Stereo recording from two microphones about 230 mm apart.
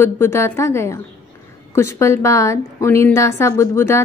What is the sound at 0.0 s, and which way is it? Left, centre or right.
A woman's voice, centre.